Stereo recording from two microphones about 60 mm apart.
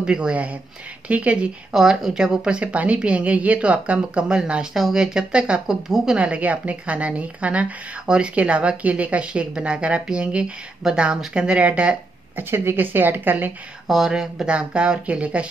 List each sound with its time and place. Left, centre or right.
0.0 s a woman's voice: centre
12.4 s a woman's voice: right
13.8 s a woman's voice: centre; by 15.4 s right